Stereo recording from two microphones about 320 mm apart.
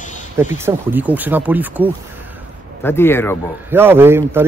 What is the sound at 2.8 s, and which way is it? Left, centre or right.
Speech, centre.